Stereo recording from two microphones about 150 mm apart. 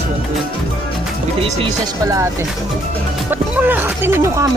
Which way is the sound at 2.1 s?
20° right (ahead or behind).